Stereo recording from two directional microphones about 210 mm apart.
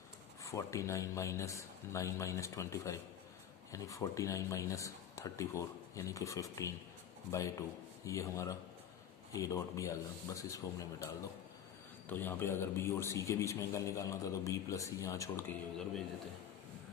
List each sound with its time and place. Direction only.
0.4 s a man's voice: 15° left (ahead or behind)
12.1 s a man's voice: 10° left (ahead or behind)